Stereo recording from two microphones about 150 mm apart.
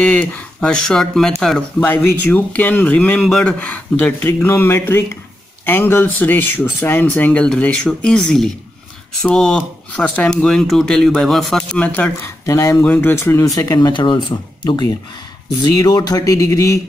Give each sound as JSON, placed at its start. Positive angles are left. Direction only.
{"t": 0.0, "sound": "speech", "side_deg": 10}